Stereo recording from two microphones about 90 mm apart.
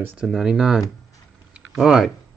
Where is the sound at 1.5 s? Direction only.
5° right (ahead or behind).